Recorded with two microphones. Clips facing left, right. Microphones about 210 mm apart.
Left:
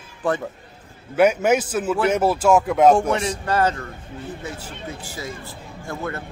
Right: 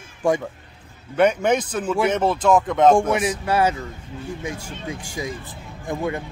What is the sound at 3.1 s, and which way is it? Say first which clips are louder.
Speech: right 1 dB; 10° right (ahead or behind).